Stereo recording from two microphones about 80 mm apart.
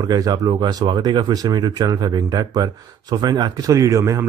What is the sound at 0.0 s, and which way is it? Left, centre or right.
Speech, right.